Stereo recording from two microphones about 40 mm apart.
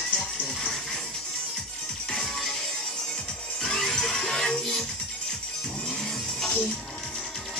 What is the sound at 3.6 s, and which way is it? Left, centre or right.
Music, centre.